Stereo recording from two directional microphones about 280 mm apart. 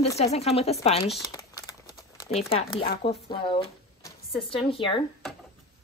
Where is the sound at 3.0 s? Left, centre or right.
Centre.